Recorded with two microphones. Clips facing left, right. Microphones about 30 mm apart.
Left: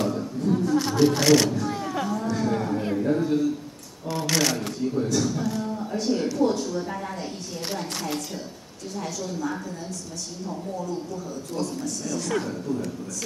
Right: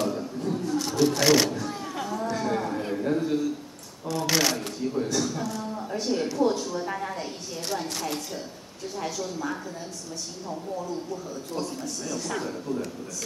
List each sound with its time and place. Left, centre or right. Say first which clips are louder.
0.0 s a sound: left 2 dB; centre
0.7 s shuffling cards: left 2 dB; centre
1.2 s speech: left 2 dB; centre
2.2 s a sound: left 2 dB; centre
4.3 s a woman's voice: left 1 dB; centre
7.7 s a woman's voice: even; centre
9.0 s speech: left 1 dB; centre
11.5 s speech: left 3 dB; centre